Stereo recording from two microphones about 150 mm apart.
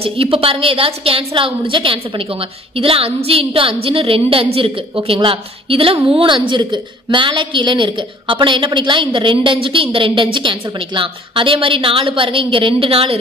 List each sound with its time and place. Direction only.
0.0 s a woman's voice: 40° right (ahead or behind)